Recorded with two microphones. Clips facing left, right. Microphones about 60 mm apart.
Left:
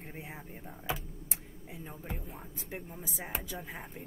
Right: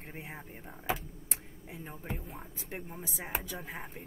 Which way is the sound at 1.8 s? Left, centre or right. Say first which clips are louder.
Right 2 dB; centre.